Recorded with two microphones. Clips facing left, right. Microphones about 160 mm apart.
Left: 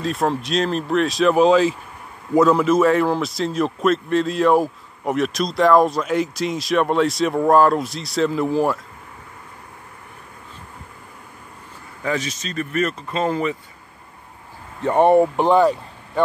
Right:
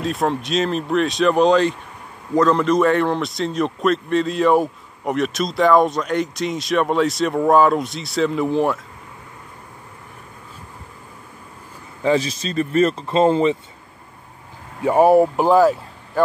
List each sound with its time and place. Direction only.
0.0 s a man's voice: centre (ahead or behind)
12.0 s speech: 30° right (ahead or behind)
14.8 s a man's voice: 5° right (ahead or behind)